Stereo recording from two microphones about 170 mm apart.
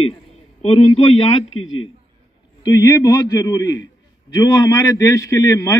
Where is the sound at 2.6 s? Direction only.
20° left (ahead or behind).